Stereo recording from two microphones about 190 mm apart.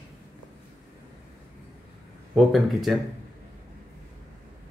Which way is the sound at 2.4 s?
Centre (ahead or behind).